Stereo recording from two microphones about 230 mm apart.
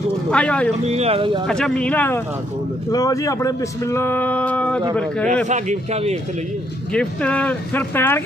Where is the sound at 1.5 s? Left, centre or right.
Centre.